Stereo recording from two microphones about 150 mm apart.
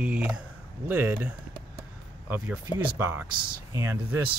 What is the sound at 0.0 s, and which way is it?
Speech, 10° right (ahead or behind).